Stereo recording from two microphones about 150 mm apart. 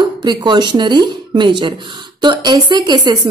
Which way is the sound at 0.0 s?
30° right (ahead or behind).